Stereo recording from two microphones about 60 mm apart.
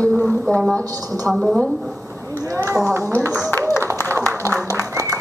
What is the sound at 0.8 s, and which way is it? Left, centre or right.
Speech, right.